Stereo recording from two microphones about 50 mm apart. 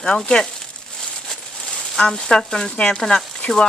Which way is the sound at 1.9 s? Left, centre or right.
Centre.